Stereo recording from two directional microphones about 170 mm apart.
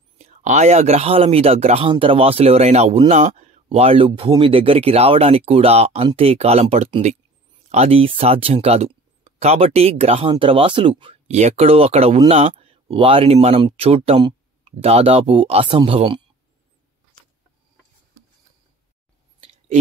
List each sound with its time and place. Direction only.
0.2 s speech: 45° right (ahead or behind)